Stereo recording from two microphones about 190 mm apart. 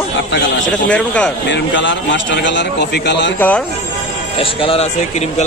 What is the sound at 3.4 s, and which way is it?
Speech, 5° left (ahead or behind).